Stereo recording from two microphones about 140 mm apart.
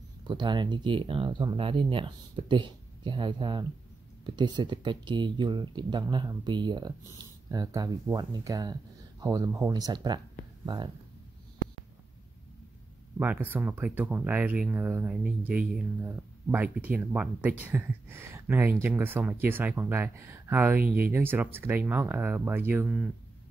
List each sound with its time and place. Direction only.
0.2 s speech: 35° right (ahead or behind)
13.2 s speech: 15° right (ahead or behind)